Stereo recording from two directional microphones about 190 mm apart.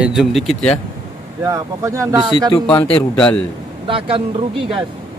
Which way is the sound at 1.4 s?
15° right (ahead or behind).